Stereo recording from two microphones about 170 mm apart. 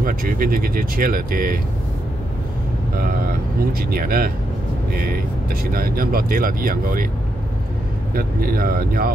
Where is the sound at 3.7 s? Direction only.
60° right (ahead or behind).